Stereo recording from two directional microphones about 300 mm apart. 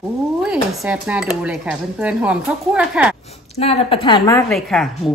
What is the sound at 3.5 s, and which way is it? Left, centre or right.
A woman's voice, centre.